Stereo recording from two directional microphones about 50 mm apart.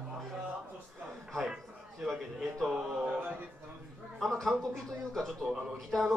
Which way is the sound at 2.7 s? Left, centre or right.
Centre.